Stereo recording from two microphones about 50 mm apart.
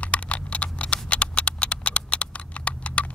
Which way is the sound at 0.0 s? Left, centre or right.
Left.